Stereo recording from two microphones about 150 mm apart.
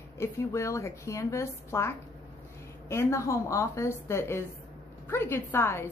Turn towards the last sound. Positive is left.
turn(degrees=15)  # may be behind; listen again after turning